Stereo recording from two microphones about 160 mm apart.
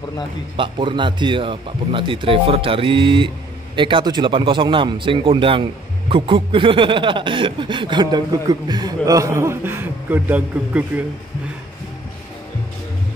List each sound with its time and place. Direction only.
0.6 s a man's voice: 30° right (ahead or behind); by 10.9 s 10° right (ahead or behind)